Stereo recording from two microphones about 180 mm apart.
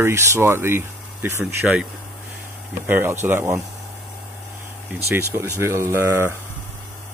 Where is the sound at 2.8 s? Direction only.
10° right (ahead or behind).